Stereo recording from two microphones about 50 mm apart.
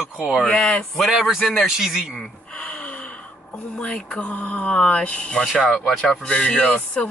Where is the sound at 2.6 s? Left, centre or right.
Left.